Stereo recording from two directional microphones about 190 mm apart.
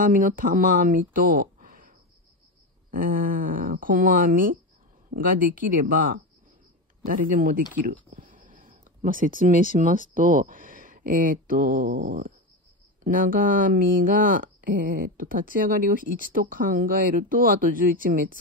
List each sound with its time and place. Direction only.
0.0 s speech: 45° right (ahead or behind)